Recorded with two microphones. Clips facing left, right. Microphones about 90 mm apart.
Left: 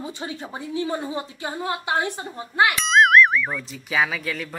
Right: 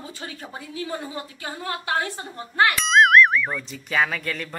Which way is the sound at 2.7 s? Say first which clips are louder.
Even; centre (ahead or behind).